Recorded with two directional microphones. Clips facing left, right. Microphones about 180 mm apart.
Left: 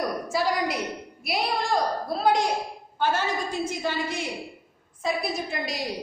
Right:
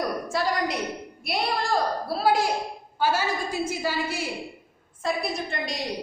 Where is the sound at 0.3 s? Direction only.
Centre (ahead or behind).